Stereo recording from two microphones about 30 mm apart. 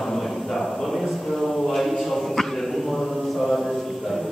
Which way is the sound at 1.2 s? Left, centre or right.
Centre.